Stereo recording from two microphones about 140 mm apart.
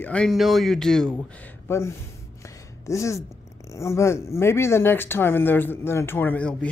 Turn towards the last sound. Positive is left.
turn(degrees=10)  # may be behind; listen again after turning